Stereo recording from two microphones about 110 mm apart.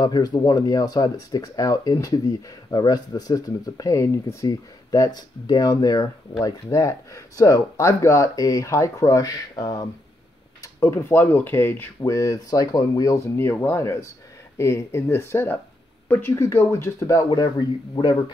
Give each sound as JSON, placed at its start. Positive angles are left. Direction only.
{"t": 0.0, "sound": "speech", "side_deg": 40}